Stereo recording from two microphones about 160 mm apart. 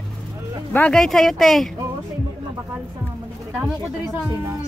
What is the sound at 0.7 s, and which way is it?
Speech, 5° left (ahead or behind).